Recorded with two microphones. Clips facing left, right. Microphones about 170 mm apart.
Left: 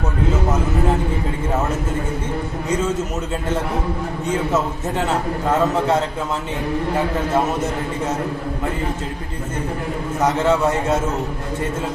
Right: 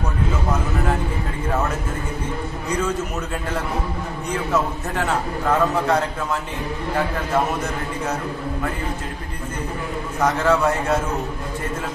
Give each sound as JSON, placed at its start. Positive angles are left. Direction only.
{"t": 4.3, "sound": "a man's voice", "side_deg": 25}
{"t": 10.4, "sound": "a man's voice", "side_deg": 25}